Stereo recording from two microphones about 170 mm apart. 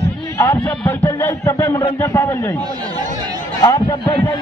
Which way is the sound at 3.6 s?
25° left (ahead or behind).